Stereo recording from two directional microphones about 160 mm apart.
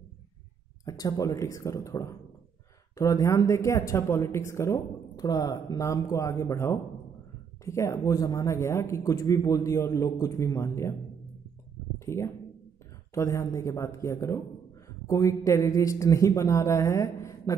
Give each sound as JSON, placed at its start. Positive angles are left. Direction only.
{"t": 0.8, "sound": "speech", "side_deg": 20}
{"t": 12.0, "sound": "speech", "side_deg": 15}